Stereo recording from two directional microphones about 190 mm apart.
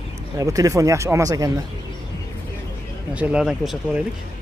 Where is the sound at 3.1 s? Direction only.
5° right (ahead or behind).